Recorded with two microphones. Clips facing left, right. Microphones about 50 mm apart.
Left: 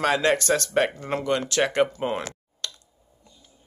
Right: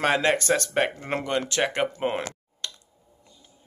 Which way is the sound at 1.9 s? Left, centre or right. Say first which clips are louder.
Even; right.